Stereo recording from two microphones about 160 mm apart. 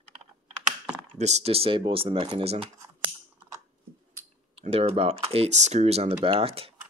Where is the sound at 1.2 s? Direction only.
45° right (ahead or behind).